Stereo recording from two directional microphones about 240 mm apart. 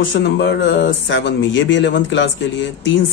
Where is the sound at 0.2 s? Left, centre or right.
Left.